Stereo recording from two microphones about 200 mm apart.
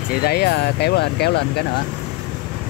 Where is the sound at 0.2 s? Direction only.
50° left (ahead or behind).